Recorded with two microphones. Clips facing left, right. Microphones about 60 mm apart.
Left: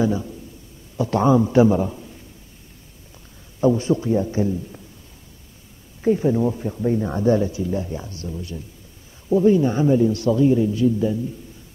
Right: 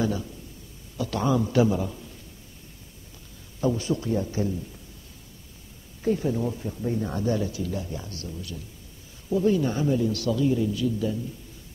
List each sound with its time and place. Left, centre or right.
0.0 s a man's voice: left
3.6 s a man's voice: left
6.0 s a man's voice: left